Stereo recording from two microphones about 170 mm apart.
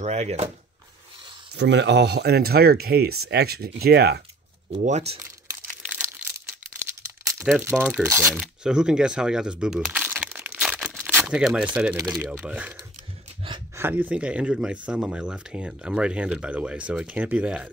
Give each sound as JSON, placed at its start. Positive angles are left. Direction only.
{"t": 0.0, "sound": "speech", "side_deg": -40}
{"t": 1.5, "sound": "speech", "side_deg": -90}
{"t": 4.7, "sound": "speech", "side_deg": -40}
{"t": 5.8, "sound": "a sound", "side_deg": -10}
{"t": 7.5, "sound": "speech", "side_deg": -5}
{"t": 12.0, "sound": "speech", "side_deg": -20}
{"t": 12.3, "sound": "speech", "side_deg": -5}
{"t": 13.4, "sound": "a sound", "side_deg": -30}
{"t": 13.7, "sound": "speech", "side_deg": -10}